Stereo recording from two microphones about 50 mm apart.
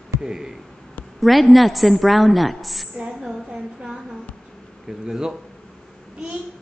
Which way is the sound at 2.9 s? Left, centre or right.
Centre.